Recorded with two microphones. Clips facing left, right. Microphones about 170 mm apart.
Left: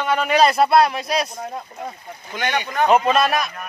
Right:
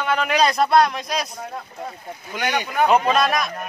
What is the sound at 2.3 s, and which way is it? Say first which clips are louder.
Speech: even; 10° right (ahead or behind).